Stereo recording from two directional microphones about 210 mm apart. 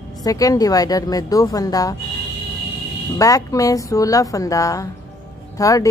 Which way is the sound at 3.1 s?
15° left (ahead or behind).